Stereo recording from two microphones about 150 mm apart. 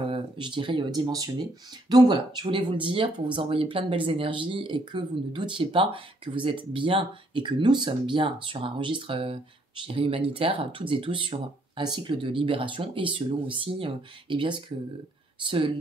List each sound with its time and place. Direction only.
0.0 s speech: 35° right (ahead or behind)